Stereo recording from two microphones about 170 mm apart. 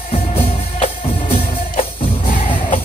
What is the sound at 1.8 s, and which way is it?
Music, 50° left (ahead or behind).